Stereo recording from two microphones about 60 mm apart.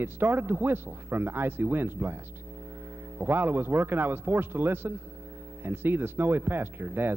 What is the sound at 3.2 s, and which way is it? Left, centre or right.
A man's voice, right.